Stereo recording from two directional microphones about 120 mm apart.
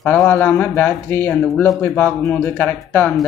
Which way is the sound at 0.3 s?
20° left (ahead or behind).